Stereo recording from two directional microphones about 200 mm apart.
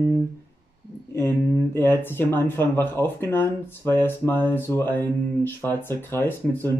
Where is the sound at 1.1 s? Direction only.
10° left (ahead or behind).